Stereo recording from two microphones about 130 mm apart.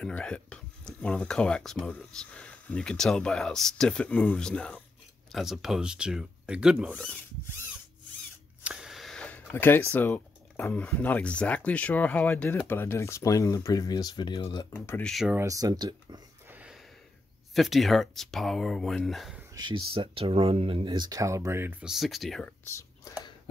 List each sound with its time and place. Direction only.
0.0 s speech: 5° left (ahead or behind)
6.9 s speech: 10° left (ahead or behind)
8.6 s a sound: 5° right (ahead or behind)
9.5 s speech: 15° left (ahead or behind); by 14.4 s 35° left (ahead or behind)
14.7 s speech: 10° left (ahead or behind)
15.3 s speech: 25° right (ahead or behind)
16.4 s a sound: 10° right (ahead or behind)
17.6 s speech: centre (ahead or behind)
19.5 s speech: 35° right (ahead or behind); by 21.7 s 20° right (ahead or behind)
21.8 s speech: centre (ahead or behind)